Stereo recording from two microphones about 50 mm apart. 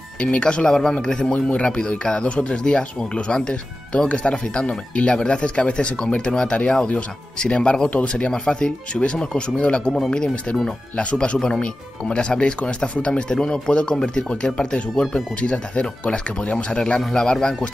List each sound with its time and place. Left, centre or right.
0.2 s speech: left
9.9 s speech: centre
11.0 s speech: left
11.3 s speech: centre